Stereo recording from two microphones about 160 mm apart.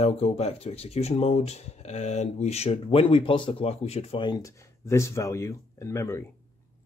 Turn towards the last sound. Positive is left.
turn(degrees=15)  # may be behind; listen again after turning